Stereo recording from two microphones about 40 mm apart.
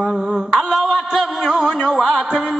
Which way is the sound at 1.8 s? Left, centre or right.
Centre.